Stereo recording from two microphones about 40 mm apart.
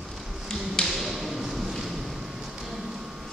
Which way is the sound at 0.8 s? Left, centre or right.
Centre.